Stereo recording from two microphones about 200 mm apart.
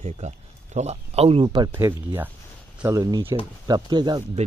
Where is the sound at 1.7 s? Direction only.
10° right (ahead or behind).